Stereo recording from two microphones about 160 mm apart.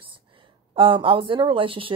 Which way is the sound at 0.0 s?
35° right (ahead or behind).